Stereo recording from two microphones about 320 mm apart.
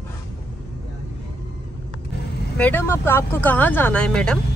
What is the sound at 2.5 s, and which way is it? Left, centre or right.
A woman's voice, centre.